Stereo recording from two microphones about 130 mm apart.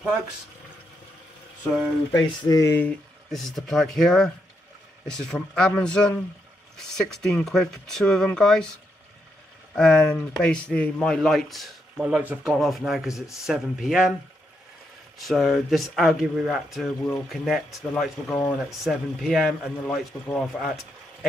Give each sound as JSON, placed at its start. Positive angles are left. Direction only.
{"t": 2.1, "sound": "speech", "side_deg": 25}
{"t": 2.7, "sound": "speech", "side_deg": 15}
{"t": 3.3, "sound": "speech", "side_deg": 0}
{"t": 9.8, "sound": "speech", "side_deg": 5}
{"t": 12.4, "sound": "speech", "side_deg": 0}
{"t": 15.1, "sound": "speech", "side_deg": 0}